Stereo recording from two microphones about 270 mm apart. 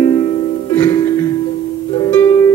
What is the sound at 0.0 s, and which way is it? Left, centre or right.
Music, centre.